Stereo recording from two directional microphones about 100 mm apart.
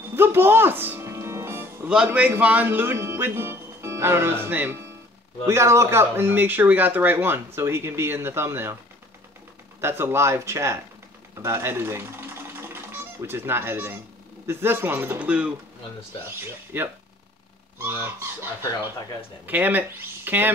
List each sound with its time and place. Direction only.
0.1 s music: 25° right (ahead or behind)
2.0 s speech: 15° right (ahead or behind)
9.8 s speech: 25° right (ahead or behind)
19.4 s speech: 20° right (ahead or behind)